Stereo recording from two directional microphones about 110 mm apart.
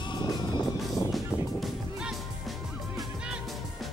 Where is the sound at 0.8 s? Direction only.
Centre (ahead or behind).